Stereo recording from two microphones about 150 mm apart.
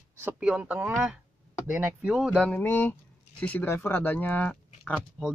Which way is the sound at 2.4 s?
10° left (ahead or behind).